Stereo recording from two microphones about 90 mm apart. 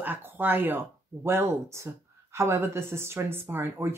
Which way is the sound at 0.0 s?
20° right (ahead or behind).